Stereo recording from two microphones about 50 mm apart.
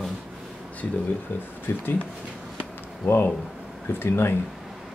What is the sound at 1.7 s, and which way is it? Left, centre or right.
Speech, left.